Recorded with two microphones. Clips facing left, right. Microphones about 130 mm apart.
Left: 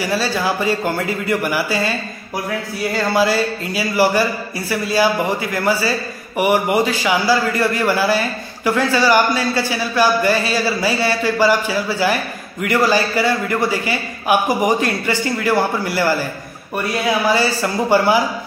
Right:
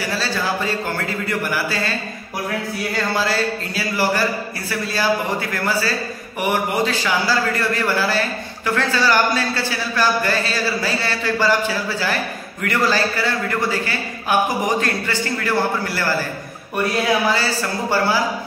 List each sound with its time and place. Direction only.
0.1 s speech: 10° left (ahead or behind)
3.2 s speech: 15° left (ahead or behind)
12.6 s speech: 10° left (ahead or behind)
17.3 s speech: 15° left (ahead or behind)